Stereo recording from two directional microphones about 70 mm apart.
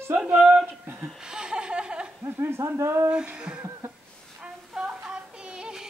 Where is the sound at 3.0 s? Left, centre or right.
Centre.